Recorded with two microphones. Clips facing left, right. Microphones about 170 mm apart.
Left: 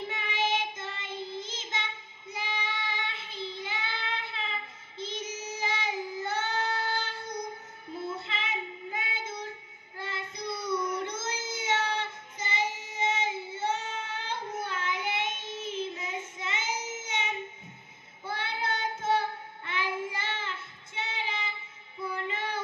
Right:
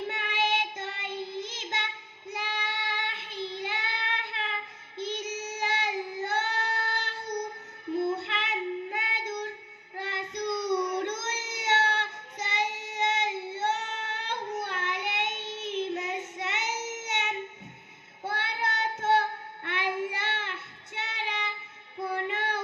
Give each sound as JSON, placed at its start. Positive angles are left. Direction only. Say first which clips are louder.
{"t": 0.1, "sound": "child singing", "louder": "left 1 dB", "side_deg": -65}
{"t": 8.0, "sound": "child singing", "louder": "right 5 dB", "side_deg": -70}